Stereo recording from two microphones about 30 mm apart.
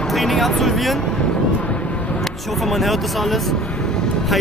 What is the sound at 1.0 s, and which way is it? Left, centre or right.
Vehicle, left.